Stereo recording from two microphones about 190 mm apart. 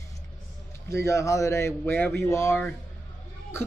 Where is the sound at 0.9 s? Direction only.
15° left (ahead or behind).